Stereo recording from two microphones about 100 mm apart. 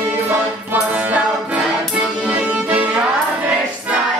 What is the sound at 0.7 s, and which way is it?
Music, 15° right (ahead or behind).